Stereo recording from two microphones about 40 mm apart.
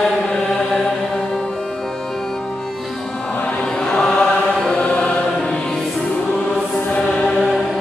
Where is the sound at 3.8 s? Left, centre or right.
Centre.